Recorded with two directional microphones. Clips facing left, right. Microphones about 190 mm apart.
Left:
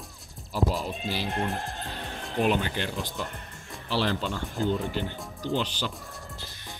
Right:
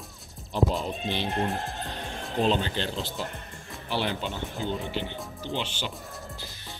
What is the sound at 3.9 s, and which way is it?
Speech, 35° left (ahead or behind).